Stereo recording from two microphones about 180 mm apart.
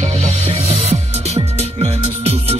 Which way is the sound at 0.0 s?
35° right (ahead or behind).